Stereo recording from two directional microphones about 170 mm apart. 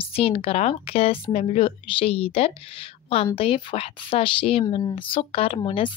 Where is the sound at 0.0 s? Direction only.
35° left (ahead or behind).